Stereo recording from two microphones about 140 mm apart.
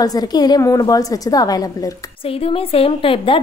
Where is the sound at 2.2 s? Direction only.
40° left (ahead or behind).